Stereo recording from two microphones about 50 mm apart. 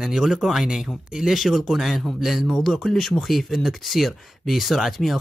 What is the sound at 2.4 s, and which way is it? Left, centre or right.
Speech, centre.